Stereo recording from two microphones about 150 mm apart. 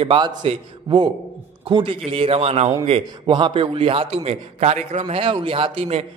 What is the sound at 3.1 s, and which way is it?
A man's voice, 30° right (ahead or behind).